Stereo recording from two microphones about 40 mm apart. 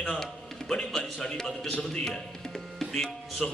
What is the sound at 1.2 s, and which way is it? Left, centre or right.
A man's voice, centre.